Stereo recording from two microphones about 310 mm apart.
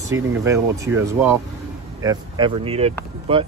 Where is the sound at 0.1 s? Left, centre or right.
Centre.